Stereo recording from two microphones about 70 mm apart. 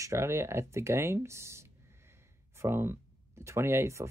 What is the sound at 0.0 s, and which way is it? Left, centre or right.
Speech, right.